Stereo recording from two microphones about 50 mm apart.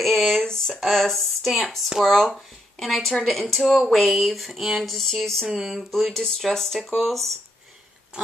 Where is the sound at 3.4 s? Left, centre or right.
Centre.